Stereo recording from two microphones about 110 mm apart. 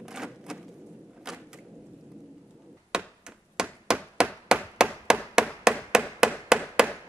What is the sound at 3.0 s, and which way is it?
Chop, 5° right (ahead or behind).